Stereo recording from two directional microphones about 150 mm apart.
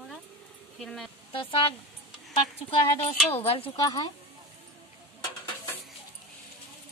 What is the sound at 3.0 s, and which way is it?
Speech, 40° left (ahead or behind).